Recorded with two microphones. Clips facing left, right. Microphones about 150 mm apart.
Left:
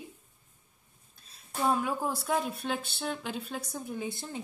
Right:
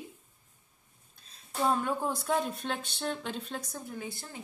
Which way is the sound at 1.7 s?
5° left (ahead or behind).